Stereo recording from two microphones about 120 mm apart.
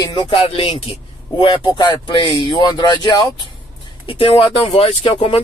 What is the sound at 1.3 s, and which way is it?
Speech, 40° left (ahead or behind).